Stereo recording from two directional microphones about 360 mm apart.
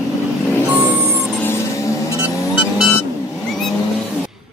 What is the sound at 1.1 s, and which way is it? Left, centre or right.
Vehicle, centre.